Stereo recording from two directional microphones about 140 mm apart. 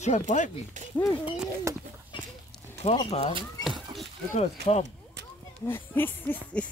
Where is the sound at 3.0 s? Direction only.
45° left (ahead or behind).